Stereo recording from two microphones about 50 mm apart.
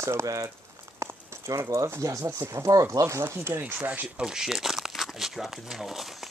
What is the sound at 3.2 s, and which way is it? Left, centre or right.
Speech, right.